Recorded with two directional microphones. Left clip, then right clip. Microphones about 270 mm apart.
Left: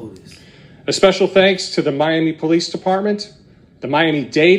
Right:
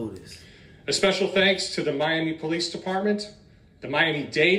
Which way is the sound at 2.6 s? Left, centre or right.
Centre.